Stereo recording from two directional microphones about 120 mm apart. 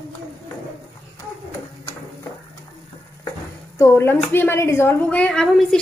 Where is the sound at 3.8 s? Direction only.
20° left (ahead or behind).